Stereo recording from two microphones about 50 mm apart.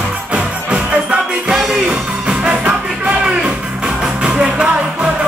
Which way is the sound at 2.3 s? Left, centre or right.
Centre.